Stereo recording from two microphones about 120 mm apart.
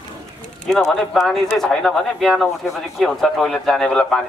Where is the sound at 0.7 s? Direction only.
Centre (ahead or behind).